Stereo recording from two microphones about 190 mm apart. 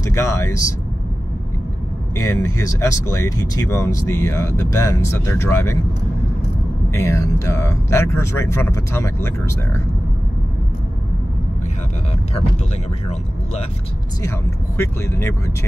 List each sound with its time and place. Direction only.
0.0 s speech: 15° left (ahead or behind)
2.1 s speech: 15° left (ahead or behind)
6.9 s speech: 15° left (ahead or behind)
14.8 s speech: 15° left (ahead or behind)